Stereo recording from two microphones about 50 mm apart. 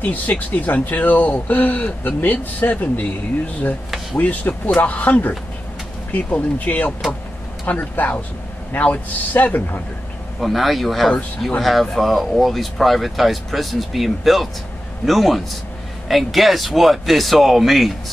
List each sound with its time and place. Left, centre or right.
0.0 s speech: left
4.2 s speech: left
10.4 s speech: centre